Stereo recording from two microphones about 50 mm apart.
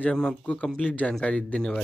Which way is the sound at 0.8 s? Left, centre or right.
Left.